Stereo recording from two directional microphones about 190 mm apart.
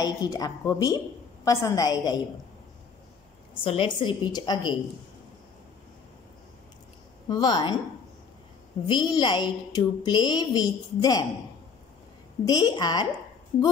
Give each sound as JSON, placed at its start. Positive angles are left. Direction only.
{"t": 0.0, "sound": "a woman's voice", "side_deg": 20}
{"t": 3.6, "sound": "a woman's voice", "side_deg": 25}
{"t": 7.2, "sound": "a woman's voice", "side_deg": 20}
{"t": 8.8, "sound": "a woman's voice", "side_deg": 25}
{"t": 12.4, "sound": "a woman's voice", "side_deg": 20}